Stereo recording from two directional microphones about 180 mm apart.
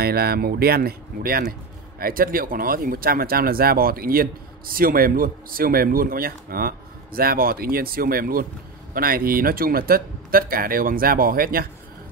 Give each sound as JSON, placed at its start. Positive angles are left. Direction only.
{"t": 0.0, "sound": "speech", "side_deg": -60}